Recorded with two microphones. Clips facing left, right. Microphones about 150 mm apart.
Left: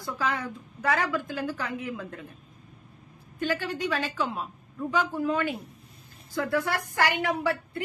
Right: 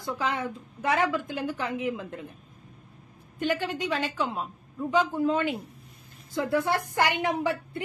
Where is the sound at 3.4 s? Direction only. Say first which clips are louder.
Right 1 dB; 20° right (ahead or behind).